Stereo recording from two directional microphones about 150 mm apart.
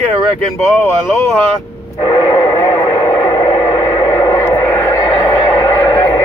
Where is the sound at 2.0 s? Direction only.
25° left (ahead or behind).